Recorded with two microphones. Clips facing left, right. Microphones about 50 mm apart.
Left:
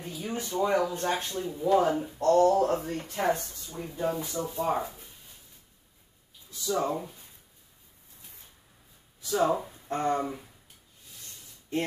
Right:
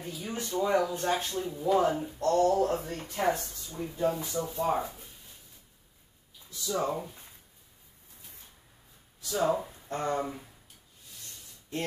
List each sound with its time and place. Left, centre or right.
0.2 s speech: centre
2.1 s speech: centre
2.6 s speech: centre
6.5 s speech: centre
9.2 s speech: centre
9.8 s speech: centre
10.2 s speech: centre